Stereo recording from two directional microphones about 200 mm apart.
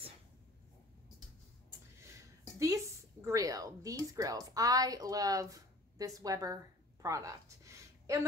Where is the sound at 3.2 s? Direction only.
15° right (ahead or behind).